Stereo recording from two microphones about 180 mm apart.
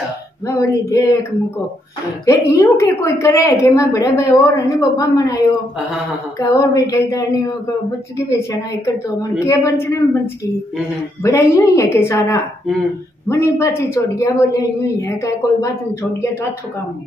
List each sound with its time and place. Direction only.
0.5 s a woman's voice: 15° left (ahead or behind)
2.5 s a woman's voice: 15° left (ahead or behind)
6.4 s a woman's voice: 20° left (ahead or behind)